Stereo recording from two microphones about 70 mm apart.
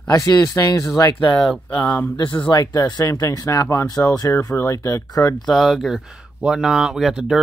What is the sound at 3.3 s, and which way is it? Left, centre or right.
Speech, left.